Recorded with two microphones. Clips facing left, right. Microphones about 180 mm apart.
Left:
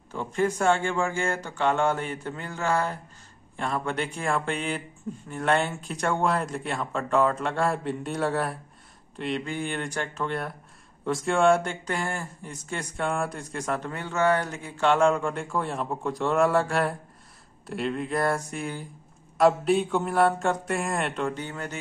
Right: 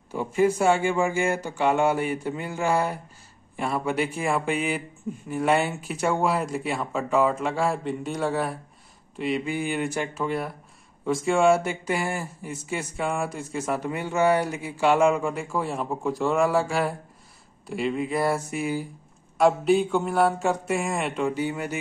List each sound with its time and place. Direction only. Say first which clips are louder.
0.1 s speech: right 4 dB; 10° right (ahead or behind)